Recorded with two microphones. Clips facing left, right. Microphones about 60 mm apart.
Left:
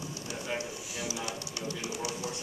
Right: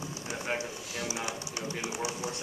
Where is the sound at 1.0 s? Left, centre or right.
Right.